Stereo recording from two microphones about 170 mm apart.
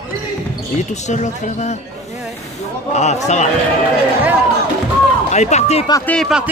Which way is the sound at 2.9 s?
40° left (ahead or behind).